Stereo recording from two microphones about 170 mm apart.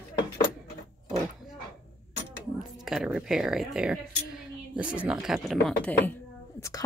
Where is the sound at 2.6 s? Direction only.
Centre (ahead or behind).